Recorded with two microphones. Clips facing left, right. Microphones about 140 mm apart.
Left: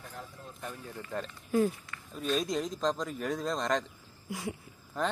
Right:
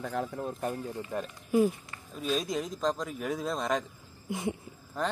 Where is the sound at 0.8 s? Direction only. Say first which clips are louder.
Right 3 dB; 20° right (ahead or behind).